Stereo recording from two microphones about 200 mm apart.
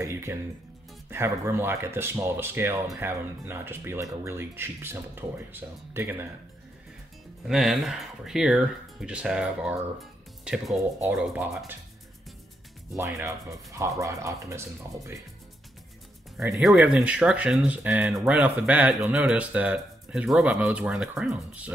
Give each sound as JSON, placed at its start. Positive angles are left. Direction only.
{"t": 0.0, "sound": "speech", "side_deg": -15}
{"t": 7.4, "sound": "speech", "side_deg": 0}
{"t": 12.9, "sound": "speech", "side_deg": -15}
{"t": 16.6, "sound": "speech", "side_deg": -5}